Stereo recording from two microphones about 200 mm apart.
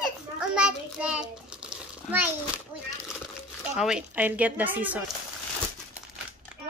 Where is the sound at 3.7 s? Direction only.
5° right (ahead or behind).